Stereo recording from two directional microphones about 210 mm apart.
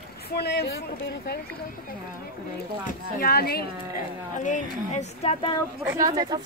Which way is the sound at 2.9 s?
45° left (ahead or behind).